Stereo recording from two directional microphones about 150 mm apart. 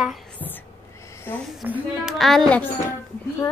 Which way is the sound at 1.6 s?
5° right (ahead or behind).